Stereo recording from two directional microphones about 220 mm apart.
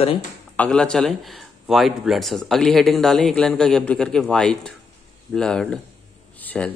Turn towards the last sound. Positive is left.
turn(degrees=5)  # may be behind; listen again after turning